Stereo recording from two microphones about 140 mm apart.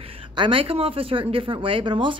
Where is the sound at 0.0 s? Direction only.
40° right (ahead or behind).